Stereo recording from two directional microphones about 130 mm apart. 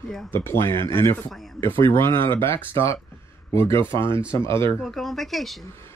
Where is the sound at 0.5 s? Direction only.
20° left (ahead or behind).